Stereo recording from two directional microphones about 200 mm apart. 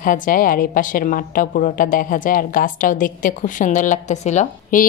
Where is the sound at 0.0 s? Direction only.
45° left (ahead or behind).